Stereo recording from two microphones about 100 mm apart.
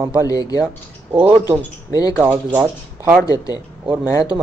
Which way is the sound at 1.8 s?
40° left (ahead or behind).